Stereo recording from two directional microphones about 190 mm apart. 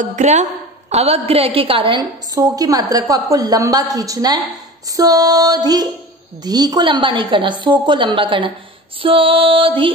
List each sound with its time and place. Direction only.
0.0 s a woman's voice: 40° right (ahead or behind)